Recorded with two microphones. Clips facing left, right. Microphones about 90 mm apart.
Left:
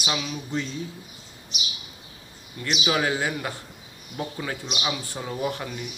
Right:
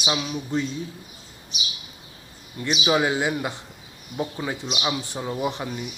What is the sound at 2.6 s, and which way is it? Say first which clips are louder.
Speech: right 3 dB; 15° right (ahead or behind).